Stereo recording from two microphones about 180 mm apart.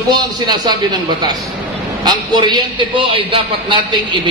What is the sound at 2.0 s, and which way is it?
A man's voice, 25° right (ahead or behind).